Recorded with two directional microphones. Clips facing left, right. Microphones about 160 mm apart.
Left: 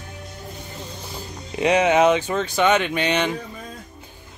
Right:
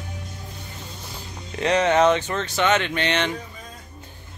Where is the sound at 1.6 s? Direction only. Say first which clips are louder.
Left 2 dB; 10° left (ahead or behind).